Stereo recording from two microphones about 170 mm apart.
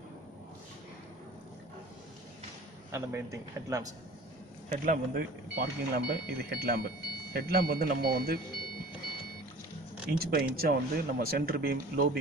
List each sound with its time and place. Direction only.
2.9 s a man's voice: 15° right (ahead or behind)
4.6 s speech: 50° right (ahead or behind)
5.6 s speech: 70° right (ahead or behind)
10.1 s speech: 60° right (ahead or behind)